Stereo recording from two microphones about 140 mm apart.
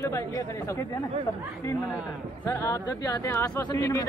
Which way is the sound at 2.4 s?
25° left (ahead or behind).